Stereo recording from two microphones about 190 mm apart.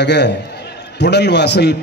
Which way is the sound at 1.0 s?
60° left (ahead or behind).